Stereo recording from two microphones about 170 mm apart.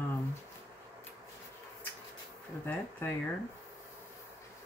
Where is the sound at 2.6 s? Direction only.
10° left (ahead or behind).